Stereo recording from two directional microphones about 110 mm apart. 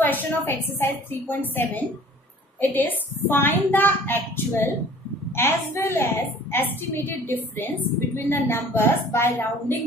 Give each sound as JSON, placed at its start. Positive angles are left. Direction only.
{"t": 0.0, "sound": "a woman's voice", "side_deg": 15}